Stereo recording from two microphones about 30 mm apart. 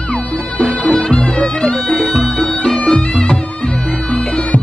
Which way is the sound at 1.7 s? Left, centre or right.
Left.